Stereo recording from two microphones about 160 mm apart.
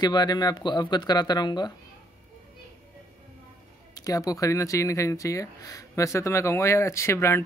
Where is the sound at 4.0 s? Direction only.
20° left (ahead or behind).